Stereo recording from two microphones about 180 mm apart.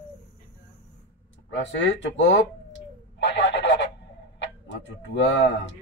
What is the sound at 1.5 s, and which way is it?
Speech, 85° left.